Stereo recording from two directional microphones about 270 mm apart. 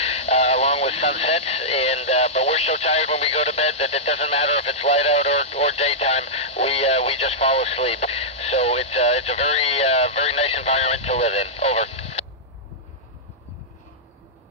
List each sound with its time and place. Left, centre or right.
0.0 s speech: left